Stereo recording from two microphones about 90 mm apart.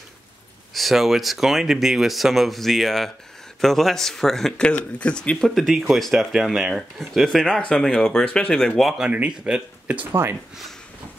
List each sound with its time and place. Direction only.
0.7 s speech: centre (ahead or behind)
9.5 s speech: 15° right (ahead or behind)